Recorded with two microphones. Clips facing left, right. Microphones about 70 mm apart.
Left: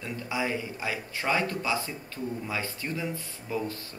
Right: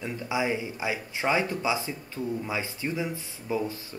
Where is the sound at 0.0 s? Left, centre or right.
Centre.